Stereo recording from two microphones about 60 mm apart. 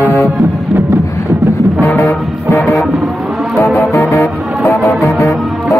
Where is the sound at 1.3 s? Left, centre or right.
Right.